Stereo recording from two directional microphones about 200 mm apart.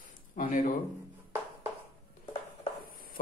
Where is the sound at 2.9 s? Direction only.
45° left (ahead or behind).